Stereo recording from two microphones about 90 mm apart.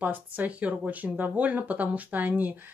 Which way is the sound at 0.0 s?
20° right (ahead or behind).